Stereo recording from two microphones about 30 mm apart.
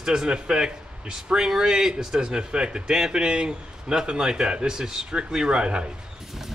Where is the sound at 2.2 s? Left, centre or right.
Right.